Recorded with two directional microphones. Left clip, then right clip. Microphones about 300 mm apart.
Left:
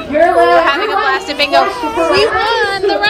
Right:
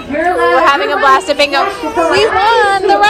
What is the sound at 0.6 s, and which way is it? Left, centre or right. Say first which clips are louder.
Speech: right 4 dB; centre.